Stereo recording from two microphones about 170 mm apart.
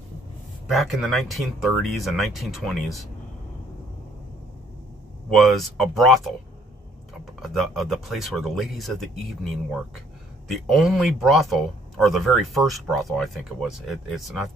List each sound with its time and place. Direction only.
0.7 s speech: centre (ahead or behind)
5.3 s speech: centre (ahead or behind)
7.4 s speech: centre (ahead or behind)